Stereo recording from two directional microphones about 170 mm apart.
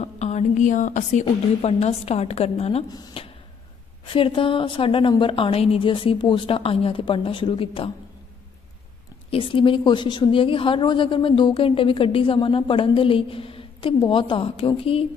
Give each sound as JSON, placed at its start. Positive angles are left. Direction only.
{"t": 0.0, "sound": "a woman's voice", "side_deg": 40}
{"t": 2.9, "sound": "a woman's voice", "side_deg": 25}
{"t": 9.3, "sound": "a woman's voice", "side_deg": 30}